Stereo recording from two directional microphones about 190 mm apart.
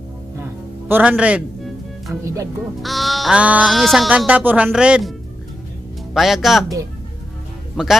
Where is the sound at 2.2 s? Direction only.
15° right (ahead or behind).